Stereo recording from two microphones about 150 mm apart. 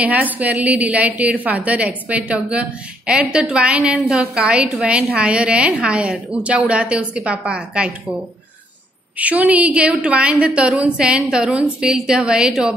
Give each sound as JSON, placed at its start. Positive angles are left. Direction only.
{"t": 0.0, "sound": "a woman's voice", "side_deg": -10}
{"t": 9.2, "sound": "a woman's voice", "side_deg": -10}